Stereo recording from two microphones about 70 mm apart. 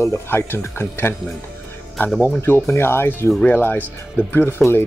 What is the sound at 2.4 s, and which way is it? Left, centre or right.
Speech, left.